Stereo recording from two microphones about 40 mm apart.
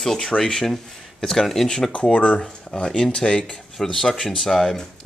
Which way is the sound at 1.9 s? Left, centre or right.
Left.